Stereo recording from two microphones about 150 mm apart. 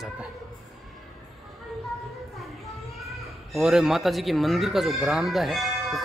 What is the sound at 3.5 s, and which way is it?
Speech, 5° right (ahead or behind).